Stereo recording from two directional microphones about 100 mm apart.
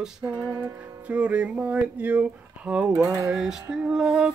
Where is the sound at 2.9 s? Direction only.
35° right (ahead or behind).